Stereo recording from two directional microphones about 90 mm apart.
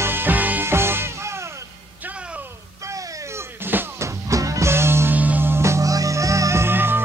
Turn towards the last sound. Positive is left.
turn(degrees=-25)  # may be behind; listen again after turning